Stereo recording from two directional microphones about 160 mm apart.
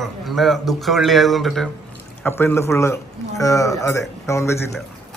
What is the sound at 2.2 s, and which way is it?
Speech, 15° left (ahead or behind).